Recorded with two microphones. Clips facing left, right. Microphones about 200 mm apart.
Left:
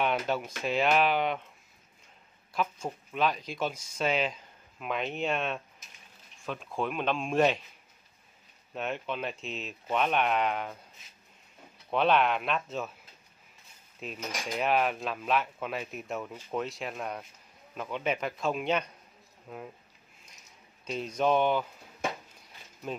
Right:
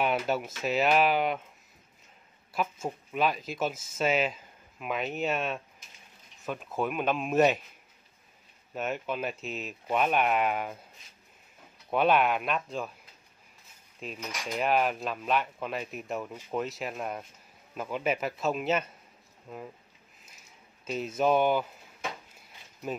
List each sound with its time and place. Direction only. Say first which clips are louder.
0.0 s cutlery: right 1 dB; 5° right (ahead or behind)
2.5 s cutlery: right 1 dB; 5° right (ahead or behind)
8.7 s cutlery: right 2 dB; 5° right (ahead or behind)
11.9 s cutlery: right 1 dB; 5° right (ahead or behind)
13.9 s cutlery: left 1 dB; 5° left (ahead or behind)
20.8 s cutlery: right 1 dB; 5° right (ahead or behind)